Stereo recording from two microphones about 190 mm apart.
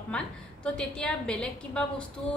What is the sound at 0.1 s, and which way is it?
A woman's voice, 5° left (ahead or behind).